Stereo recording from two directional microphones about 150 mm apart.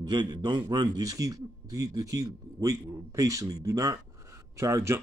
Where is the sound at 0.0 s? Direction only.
25° right (ahead or behind).